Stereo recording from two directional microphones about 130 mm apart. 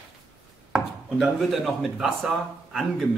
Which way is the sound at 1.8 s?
Centre (ahead or behind).